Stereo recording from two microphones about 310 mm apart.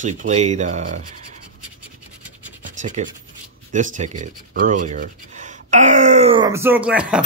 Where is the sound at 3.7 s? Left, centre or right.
Right; by 7.2 s centre.